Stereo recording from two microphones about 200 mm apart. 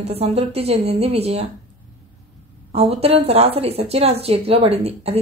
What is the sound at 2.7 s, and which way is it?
A woman's voice, 30° right (ahead or behind).